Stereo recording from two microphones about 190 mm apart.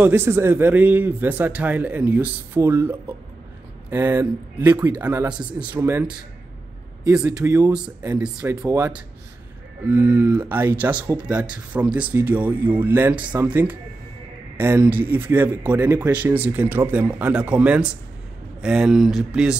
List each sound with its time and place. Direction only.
0.0 s speech: 10° right (ahead or behind)
7.2 s speech: 5° right (ahead or behind)
7.4 s speech: 15° right (ahead or behind)
7.7 s speech: 5° right (ahead or behind)
8.4 s speech: 15° right (ahead or behind)